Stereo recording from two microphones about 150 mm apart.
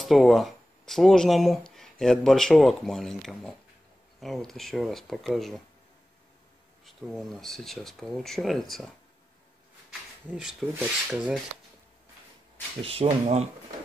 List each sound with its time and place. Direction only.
0.0 s speech: centre (ahead or behind)
6.8 s speech: centre (ahead or behind)
10.3 s speech: 5° right (ahead or behind)
12.8 s speech: 40° right (ahead or behind)